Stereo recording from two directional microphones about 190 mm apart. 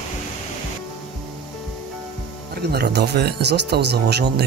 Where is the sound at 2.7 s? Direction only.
60° right (ahead or behind).